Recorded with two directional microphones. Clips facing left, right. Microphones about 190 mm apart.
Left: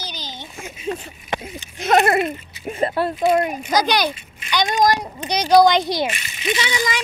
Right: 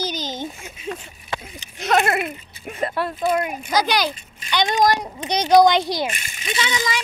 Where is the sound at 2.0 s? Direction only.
25° left (ahead or behind).